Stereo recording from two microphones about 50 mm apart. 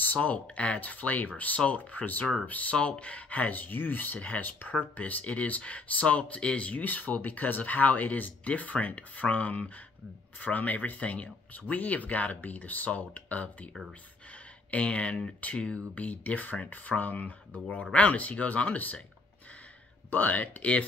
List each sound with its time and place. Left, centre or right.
0.0 s speech: left
6.8 s speech: left
20.1 s speech: left